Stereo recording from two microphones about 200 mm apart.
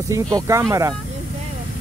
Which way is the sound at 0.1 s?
15° right (ahead or behind).